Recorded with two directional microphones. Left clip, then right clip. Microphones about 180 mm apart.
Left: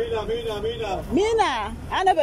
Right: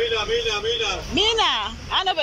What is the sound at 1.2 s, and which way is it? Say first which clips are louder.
A woman's voice: right 1 dB; 30° left (ahead or behind).